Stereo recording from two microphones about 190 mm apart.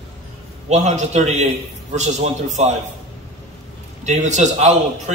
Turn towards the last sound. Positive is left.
turn(degrees=-40)  # may be behind; listen again after turning